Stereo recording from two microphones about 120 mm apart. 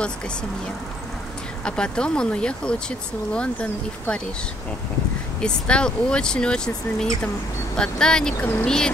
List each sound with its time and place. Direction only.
1.6 s speech: 5° left (ahead or behind)
5.4 s speech: 10° left (ahead or behind)
8.4 s speech: 20° left (ahead or behind)
8.6 s speech: 5° left (ahead or behind)